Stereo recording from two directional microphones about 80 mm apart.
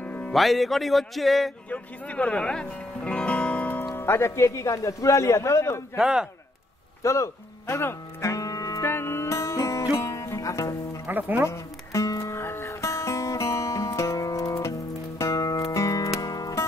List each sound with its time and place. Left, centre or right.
0.0 s music: centre
0.3 s speech: centre
1.7 s speech: centre
3.9 s a man's voice: left
5.9 s a man's voice: centre
7.0 s music: left
8.8 s music: left
11.1 s speech: right
11.4 s music: left